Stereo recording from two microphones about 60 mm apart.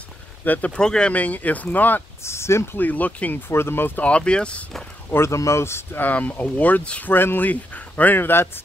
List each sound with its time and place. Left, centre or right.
0.5 s speech: left
0.7 s speech: centre; by 2.0 s left
2.2 s speech: left
2.8 s speech: left
3.4 s speech: left
4.0 s speech: centre
5.1 s speech: left
5.9 s speech: left
7.1 s speech: left